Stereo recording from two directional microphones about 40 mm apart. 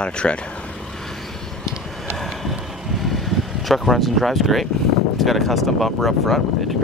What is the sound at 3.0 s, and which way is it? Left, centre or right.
Vehicle, centre.